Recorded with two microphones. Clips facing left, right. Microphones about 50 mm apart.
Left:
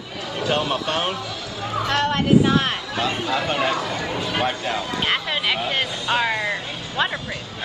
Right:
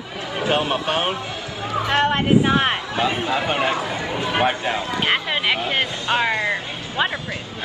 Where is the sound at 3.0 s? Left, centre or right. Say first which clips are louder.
Right 1 dB; centre.